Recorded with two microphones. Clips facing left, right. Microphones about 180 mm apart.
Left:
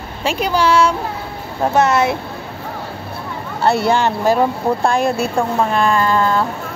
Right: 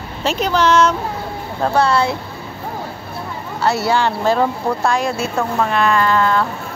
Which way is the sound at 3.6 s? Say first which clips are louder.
Left 3 dB; 55° left (ahead or behind).